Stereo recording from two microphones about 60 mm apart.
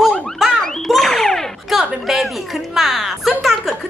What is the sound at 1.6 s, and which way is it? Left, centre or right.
A woman's voice, centre.